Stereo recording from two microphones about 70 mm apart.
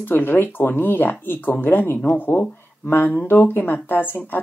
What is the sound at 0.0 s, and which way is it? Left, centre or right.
Speech, left.